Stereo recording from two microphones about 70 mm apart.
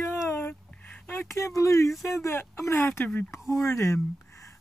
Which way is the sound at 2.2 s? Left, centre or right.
Left.